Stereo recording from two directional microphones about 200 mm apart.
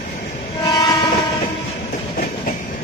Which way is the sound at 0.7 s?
20° left (ahead or behind).